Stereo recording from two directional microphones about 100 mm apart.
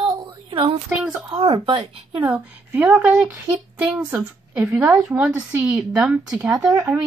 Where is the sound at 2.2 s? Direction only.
15° right (ahead or behind).